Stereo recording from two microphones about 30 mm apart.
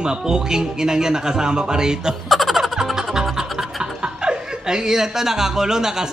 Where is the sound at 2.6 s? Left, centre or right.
Centre.